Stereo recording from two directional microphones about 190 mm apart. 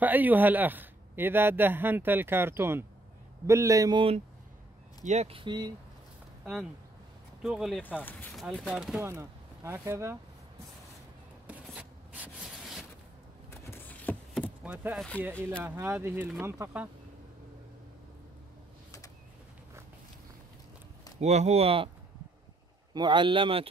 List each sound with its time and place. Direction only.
0.0 s a man's voice: 10° right (ahead or behind)
5.0 s speech: 35° right (ahead or behind)
7.4 s speech: centre (ahead or behind)
8.0 s speech: 10° left (ahead or behind); by 10.1 s 15° right (ahead or behind)
11.4 s rub: 5° right (ahead or behind)
13.7 s a sound: 10° left (ahead or behind)
14.6 s a man's voice: 5° right (ahead or behind)
21.2 s speech: 35° right (ahead or behind)
22.9 s speech: 25° right (ahead or behind)